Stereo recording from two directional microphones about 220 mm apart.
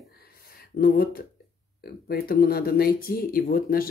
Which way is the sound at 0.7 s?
45° left (ahead or behind).